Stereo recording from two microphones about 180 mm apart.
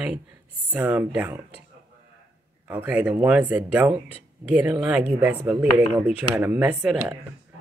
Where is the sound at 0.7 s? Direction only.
10° right (ahead or behind).